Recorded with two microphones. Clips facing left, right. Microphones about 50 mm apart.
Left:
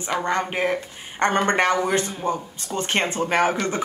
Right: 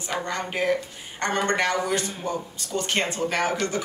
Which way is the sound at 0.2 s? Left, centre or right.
Left.